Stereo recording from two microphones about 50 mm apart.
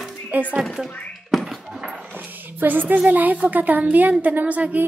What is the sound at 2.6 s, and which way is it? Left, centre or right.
Speech, right.